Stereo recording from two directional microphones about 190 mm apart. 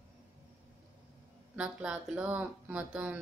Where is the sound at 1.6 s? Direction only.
5° right (ahead or behind).